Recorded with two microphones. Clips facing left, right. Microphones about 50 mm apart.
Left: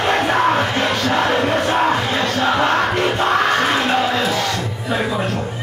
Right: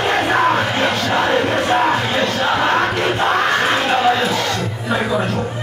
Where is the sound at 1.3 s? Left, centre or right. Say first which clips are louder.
Right 1 dB; right.